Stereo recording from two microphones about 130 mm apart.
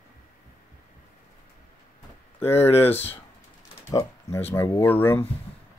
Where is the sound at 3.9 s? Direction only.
20° left (ahead or behind).